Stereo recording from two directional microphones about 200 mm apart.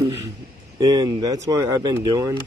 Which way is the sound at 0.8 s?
20° right (ahead or behind).